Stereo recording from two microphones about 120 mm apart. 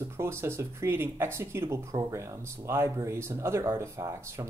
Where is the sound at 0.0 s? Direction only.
20° right (ahead or behind).